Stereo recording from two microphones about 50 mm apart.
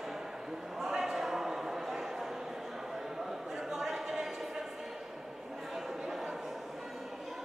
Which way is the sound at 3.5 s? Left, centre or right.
Centre.